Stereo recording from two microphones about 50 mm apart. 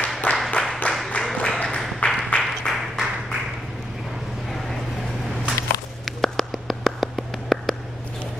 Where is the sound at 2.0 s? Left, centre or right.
Left.